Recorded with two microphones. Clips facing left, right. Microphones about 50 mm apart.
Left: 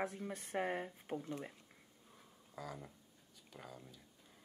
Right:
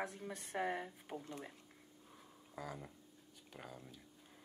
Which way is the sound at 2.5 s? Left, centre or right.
Centre.